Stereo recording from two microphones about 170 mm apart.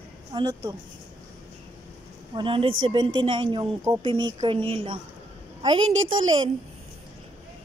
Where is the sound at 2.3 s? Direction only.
30° right (ahead or behind).